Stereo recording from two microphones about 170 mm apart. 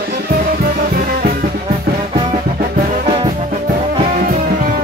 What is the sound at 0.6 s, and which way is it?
Music, 65° right (ahead or behind).